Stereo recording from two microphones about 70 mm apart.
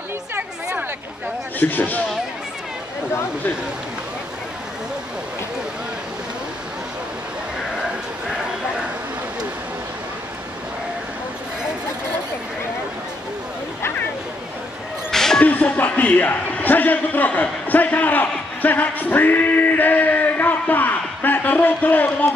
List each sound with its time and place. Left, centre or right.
1.6 s speech: left
15.0 s a sound: centre
15.4 s speech: left